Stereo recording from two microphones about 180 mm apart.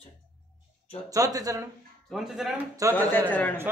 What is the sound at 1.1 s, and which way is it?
Speech, 20° right (ahead or behind).